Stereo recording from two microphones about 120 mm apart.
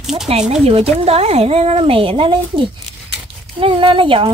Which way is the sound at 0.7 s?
55° right (ahead or behind).